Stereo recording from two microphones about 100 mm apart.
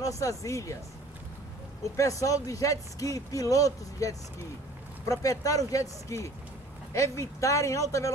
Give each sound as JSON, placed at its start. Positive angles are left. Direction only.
{"t": 0.0, "sound": "speech", "side_deg": 35}
{"t": 2.0, "sound": "speech", "side_deg": 35}